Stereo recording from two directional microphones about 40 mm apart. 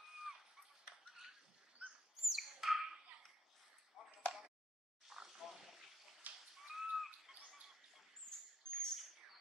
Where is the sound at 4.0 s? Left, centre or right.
Centre.